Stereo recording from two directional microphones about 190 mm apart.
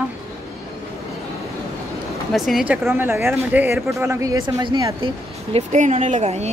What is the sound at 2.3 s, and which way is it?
Speech, centre (ahead or behind).